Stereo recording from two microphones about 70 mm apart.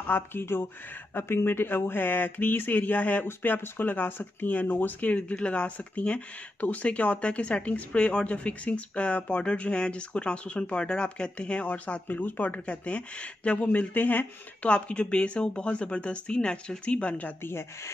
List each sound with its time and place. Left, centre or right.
0.0 s speech: left
17.4 s speech: left